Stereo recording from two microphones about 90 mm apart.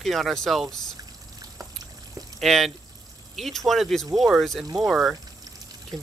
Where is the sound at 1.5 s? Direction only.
40° right (ahead or behind).